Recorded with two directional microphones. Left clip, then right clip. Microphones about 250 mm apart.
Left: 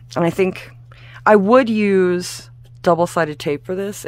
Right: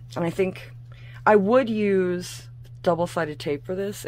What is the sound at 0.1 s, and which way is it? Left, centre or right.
Speech, left.